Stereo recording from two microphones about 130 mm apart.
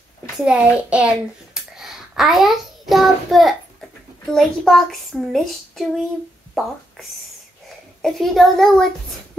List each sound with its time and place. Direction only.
0.4 s a child's voice: 5° right (ahead or behind)
8.0 s a woman's voice: centre (ahead or behind)